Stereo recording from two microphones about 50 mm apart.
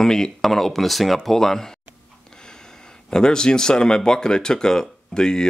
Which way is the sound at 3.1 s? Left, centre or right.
Centre.